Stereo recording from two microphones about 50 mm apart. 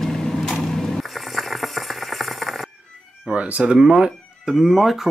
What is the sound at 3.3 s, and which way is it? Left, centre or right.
Speech, right.